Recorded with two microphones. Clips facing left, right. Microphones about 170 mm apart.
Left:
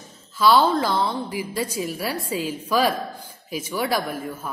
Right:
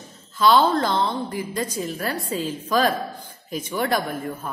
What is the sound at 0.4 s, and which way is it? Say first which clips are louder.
A woman's voice: even; 5° left (ahead or behind).